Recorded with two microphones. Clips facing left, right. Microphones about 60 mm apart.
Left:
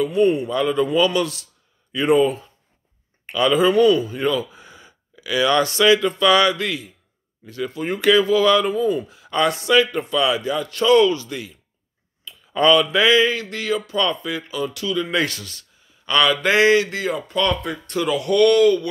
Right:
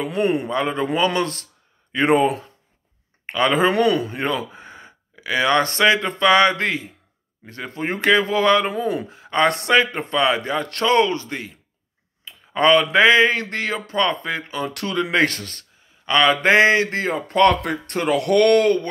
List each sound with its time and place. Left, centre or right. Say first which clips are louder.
0.0 s speech: left 3 dB; right
0.5 s speech: left 2 dB; right
3.3 s speech: left 1 dB; right
9.5 s speech: even; right
9.8 s speech: left 1 dB; right
11.0 s speech: left 2 dB; right
12.3 s a sound: even; right
12.9 s speech: right 2 dB; right
16.1 s speech: right 2 dB; right
17.3 s speech: right 9 dB; right